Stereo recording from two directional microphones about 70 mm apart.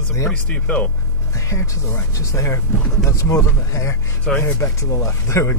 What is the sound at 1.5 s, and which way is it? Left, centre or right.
A man's voice, left.